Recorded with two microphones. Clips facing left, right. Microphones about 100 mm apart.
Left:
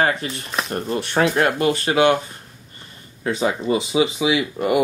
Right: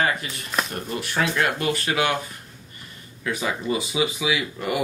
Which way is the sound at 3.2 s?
35° left (ahead or behind).